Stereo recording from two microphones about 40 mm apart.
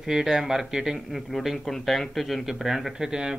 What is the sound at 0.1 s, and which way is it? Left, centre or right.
Speech, centre.